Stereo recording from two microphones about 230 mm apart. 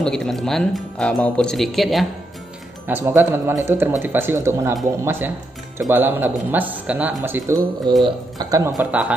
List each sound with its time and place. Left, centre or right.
0.0 s speech: centre
5.9 s speech: centre